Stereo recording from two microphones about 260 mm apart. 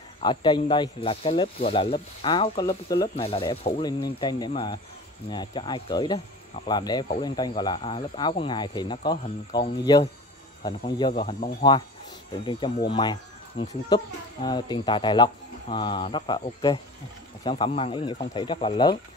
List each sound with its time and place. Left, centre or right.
0.2 s speech: centre